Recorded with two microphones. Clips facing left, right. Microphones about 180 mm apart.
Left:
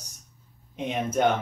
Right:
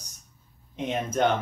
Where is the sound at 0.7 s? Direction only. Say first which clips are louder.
Left 1 dB; 10° left (ahead or behind).